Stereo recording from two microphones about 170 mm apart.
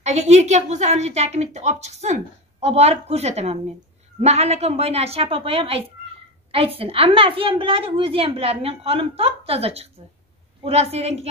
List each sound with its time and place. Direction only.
0.0 s a woman's voice: 40° right (ahead or behind)